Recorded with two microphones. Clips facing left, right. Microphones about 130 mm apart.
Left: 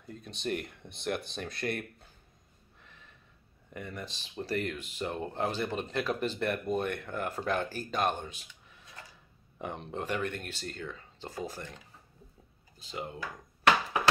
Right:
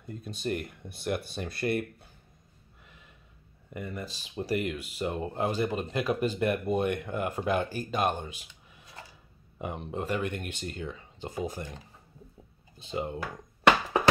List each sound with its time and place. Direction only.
0.0 s speech: 5° right (ahead or behind)
2.8 s gasp: 10° right (ahead or behind)
3.7 s speech: 5° right (ahead or behind)
9.6 s speech: 5° right (ahead or behind)
10.3 s speech: 15° right (ahead or behind)